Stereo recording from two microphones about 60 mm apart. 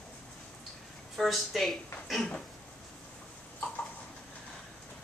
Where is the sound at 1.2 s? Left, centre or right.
Centre.